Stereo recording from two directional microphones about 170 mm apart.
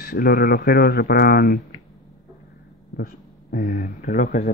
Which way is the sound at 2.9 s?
60° left (ahead or behind).